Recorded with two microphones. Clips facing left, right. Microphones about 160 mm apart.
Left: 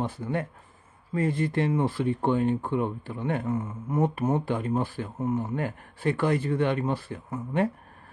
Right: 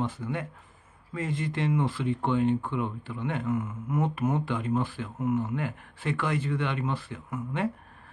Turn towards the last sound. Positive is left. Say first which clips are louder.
# left 5 dB
turn(degrees=40)  # may be behind; listen again after turning